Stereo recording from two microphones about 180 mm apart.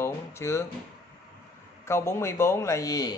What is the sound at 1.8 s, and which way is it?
Speech, 15° left (ahead or behind).